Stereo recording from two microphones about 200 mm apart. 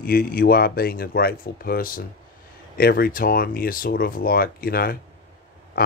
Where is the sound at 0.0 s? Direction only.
50° left (ahead or behind).